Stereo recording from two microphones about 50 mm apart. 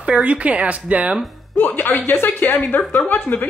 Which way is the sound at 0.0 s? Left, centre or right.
Right.